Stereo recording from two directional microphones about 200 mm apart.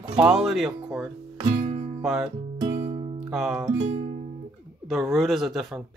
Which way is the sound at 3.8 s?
35° right (ahead or behind).